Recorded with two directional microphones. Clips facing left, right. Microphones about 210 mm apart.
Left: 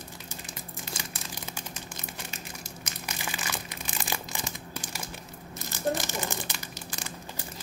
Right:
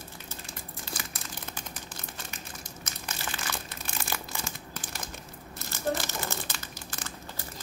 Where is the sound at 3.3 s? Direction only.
10° left (ahead or behind).